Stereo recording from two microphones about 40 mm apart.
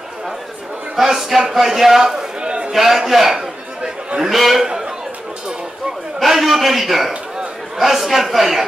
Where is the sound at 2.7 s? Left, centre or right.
Centre.